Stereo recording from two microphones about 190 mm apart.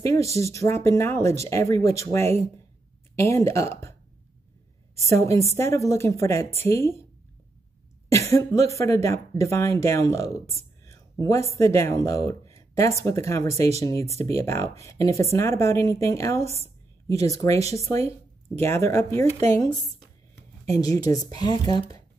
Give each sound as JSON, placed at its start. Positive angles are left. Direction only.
{"t": 0.0, "sound": "speech", "side_deg": 15}
{"t": 5.1, "sound": "speech", "side_deg": 15}
{"t": 8.1, "sound": "speech", "side_deg": 15}
{"t": 16.4, "sound": "a woman's voice", "side_deg": -35}
{"t": 17.1, "sound": "speech", "side_deg": 15}